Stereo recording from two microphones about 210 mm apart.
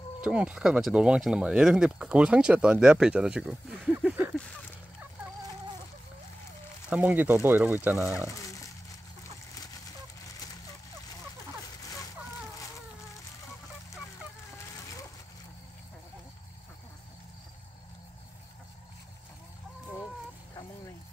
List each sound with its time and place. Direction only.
0.2 s speech: 5° right (ahead or behind)
6.9 s speech: 5° right (ahead or behind)
8.2 s speech: 15° left (ahead or behind)
10.2 s fowl: 20° left (ahead or behind)
11.8 s a sound: 15° left (ahead or behind)